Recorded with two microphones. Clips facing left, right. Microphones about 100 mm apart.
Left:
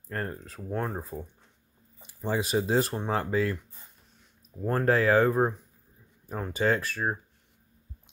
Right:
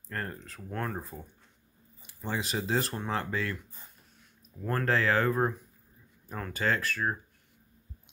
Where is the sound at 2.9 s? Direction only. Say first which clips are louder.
Left 4 dB; 20° left (ahead or behind).